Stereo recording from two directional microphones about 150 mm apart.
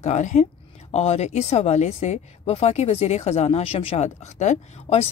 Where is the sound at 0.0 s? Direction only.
55° left (ahead or behind).